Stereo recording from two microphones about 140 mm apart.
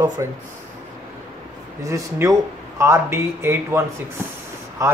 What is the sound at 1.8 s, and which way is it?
Speech, 20° right (ahead or behind).